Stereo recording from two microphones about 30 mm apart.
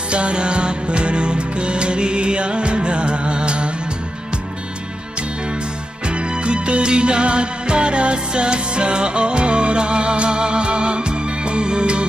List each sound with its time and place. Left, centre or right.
0.1 s music: right
6.0 s music: right